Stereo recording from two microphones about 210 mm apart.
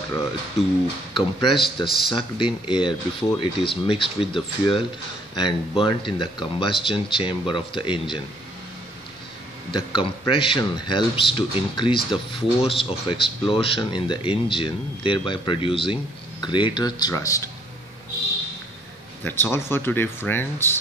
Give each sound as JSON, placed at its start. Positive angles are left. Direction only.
{"t": 1.1, "sound": "speech", "side_deg": 25}
{"t": 9.9, "sound": "speech", "side_deg": 25}
{"t": 19.2, "sound": "speech", "side_deg": 10}